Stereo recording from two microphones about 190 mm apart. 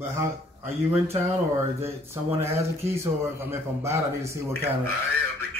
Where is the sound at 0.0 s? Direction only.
15° right (ahead or behind).